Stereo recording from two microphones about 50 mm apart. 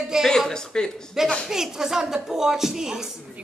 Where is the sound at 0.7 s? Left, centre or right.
Centre.